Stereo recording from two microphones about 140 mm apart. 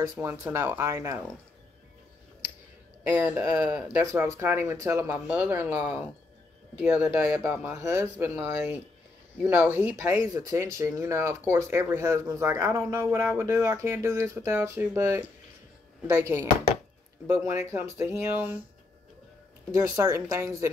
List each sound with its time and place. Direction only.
0.1 s speech: 25° right (ahead or behind)
3.0 s speech: 15° right (ahead or behind)
5.1 s speech: 5° right (ahead or behind)
10.3 s speech: 20° right (ahead or behind)
19.7 s speech: 25° right (ahead or behind)